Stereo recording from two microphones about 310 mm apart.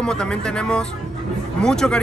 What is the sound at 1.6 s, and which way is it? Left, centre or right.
Speech, centre.